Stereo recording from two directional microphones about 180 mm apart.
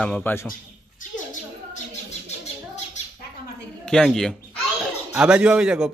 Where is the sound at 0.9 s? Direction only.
45° left (ahead or behind).